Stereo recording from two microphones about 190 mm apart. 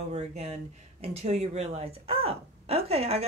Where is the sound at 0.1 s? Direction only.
35° right (ahead or behind).